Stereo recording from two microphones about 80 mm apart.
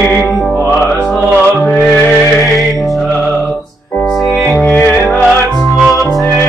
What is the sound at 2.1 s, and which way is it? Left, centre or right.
Music, centre.